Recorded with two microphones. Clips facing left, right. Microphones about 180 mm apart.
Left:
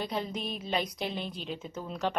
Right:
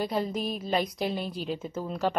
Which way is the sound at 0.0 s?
5° right (ahead or behind).